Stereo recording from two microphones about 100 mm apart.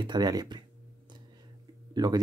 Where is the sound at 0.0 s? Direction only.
45° right (ahead or behind).